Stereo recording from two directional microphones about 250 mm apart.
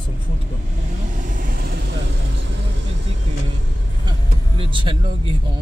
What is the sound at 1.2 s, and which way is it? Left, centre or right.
Vehicle, right.